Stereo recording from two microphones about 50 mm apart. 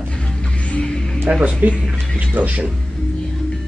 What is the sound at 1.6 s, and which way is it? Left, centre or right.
Speech, right.